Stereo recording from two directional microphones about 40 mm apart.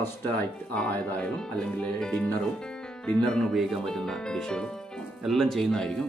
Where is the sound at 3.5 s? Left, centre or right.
Centre.